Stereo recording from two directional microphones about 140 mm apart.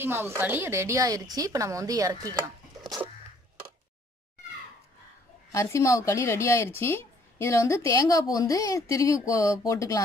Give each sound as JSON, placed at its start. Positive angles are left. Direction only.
{"t": 0.0, "sound": "speech", "side_deg": -15}
{"t": 5.5, "sound": "a woman's voice", "side_deg": 20}